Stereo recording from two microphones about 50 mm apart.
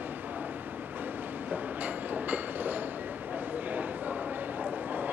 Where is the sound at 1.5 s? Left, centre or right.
Right.